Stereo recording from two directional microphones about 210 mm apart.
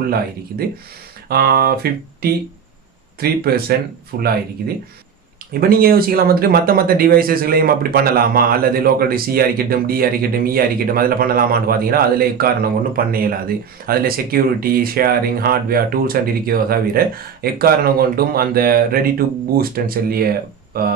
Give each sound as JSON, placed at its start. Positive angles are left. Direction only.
{"t": 1.3, "sound": "speech", "side_deg": -45}
{"t": 5.5, "sound": "speech", "side_deg": -45}